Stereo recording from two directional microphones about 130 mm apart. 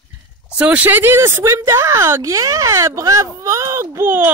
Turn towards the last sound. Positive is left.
turn(degrees=-15)  # may be behind; listen again after turning